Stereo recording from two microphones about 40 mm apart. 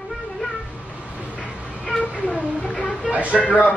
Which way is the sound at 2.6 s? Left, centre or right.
Left.